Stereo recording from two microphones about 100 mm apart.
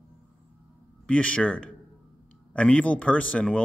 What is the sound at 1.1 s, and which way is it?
A man's voice, 10° left (ahead or behind).